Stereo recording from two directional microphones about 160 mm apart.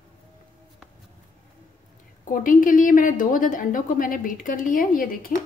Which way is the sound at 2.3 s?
60° left (ahead or behind).